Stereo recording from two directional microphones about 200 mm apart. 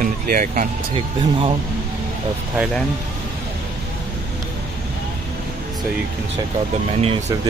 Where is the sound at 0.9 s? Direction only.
25° right (ahead or behind).